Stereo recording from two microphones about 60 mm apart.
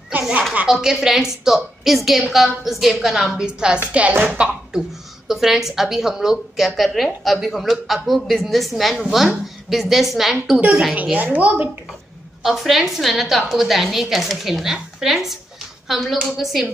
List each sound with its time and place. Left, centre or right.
0.1 s a sound: right
0.7 s a woman's voice: centre
4.1 s a woman's voice: right
5.3 s a woman's voice: centre
11.1 s a woman's voice: right
12.4 s a woman's voice: centre